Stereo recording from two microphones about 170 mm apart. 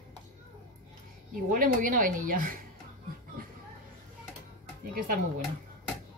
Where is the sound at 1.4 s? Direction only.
55° right (ahead or behind).